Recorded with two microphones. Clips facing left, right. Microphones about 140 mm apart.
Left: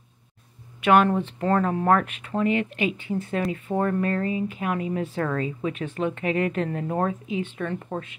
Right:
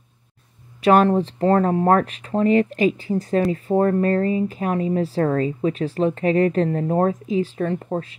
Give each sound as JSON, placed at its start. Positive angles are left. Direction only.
{"t": 0.8, "sound": "speech", "side_deg": -35}